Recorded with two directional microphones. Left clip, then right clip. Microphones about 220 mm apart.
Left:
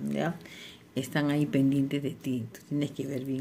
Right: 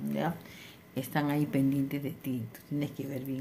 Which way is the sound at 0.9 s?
Centre (ahead or behind).